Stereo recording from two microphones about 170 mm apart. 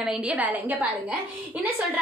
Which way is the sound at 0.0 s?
5° right (ahead or behind).